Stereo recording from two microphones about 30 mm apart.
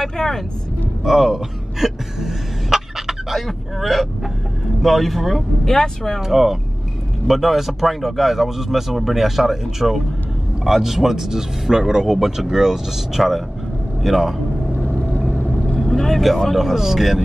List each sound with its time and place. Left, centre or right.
0.0 s speech: centre
1.0 s a sound: centre
4.8 s speech: centre
5.7 s speech: centre
6.2 s speech: centre
15.8 s speech: centre
16.5 s speech: centre